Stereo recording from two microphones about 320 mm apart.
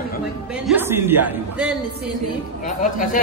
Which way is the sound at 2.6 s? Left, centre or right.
Left.